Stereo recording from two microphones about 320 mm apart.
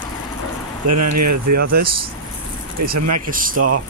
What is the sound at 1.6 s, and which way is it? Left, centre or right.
Speech, right.